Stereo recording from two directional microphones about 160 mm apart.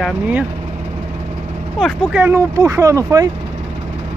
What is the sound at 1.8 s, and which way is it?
Speech, 10° right (ahead or behind).